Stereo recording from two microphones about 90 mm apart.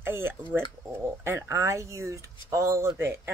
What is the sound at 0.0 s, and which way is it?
Speech, 25° right (ahead or behind).